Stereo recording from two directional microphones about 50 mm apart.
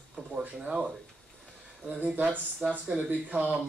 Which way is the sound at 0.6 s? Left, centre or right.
Centre.